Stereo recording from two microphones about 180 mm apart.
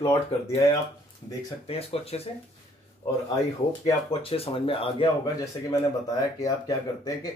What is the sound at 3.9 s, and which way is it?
Speech, 30° left (ahead or behind).